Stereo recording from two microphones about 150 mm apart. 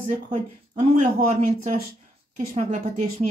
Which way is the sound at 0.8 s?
45° right (ahead or behind).